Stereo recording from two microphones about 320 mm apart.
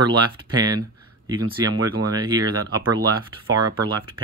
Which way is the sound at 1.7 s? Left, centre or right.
Right.